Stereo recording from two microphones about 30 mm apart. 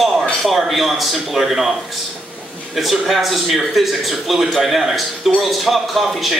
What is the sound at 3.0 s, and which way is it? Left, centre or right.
A man's voice, centre.